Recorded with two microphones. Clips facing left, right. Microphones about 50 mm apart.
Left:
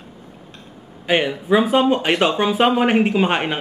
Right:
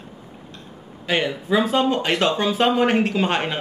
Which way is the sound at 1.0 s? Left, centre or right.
Centre.